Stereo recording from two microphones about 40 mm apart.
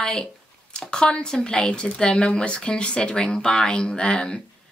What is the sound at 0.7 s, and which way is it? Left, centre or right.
A woman's voice, left.